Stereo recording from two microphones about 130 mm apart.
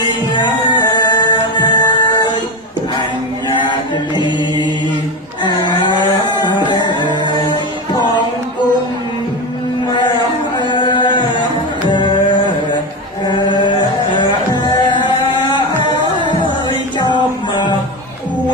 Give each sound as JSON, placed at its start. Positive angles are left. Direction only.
{"t": 0.3, "sound": "music", "side_deg": 35}
{"t": 3.4, "sound": "chant", "side_deg": 35}
{"t": 5.4, "sound": "music", "side_deg": 30}
{"t": 9.8, "sound": "a sound", "side_deg": 35}
{"t": 11.9, "sound": "music", "side_deg": 35}